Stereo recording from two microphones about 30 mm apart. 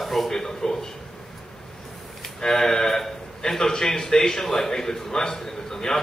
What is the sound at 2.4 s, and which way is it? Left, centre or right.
A man's voice, centre.